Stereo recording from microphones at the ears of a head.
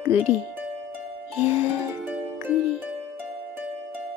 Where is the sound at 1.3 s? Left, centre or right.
Left.